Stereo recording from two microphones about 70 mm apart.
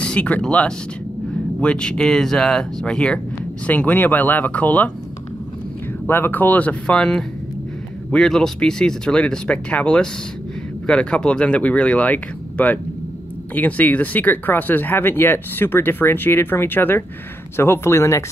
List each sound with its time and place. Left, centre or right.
0.0 s speech: centre
3.6 s speech: left
6.0 s speech: left